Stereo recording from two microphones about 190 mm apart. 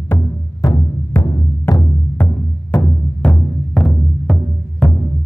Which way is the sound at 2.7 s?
10° left (ahead or behind).